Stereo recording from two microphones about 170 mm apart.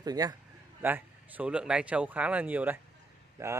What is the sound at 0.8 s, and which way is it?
Speech, 10° right (ahead or behind).